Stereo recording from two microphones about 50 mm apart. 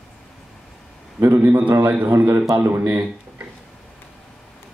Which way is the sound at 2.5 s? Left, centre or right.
Right.